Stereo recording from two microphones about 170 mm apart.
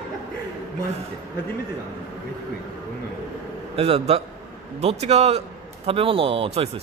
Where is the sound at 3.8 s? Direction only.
35° right (ahead or behind).